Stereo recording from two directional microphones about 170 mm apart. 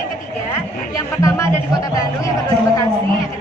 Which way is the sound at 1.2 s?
20° left (ahead or behind).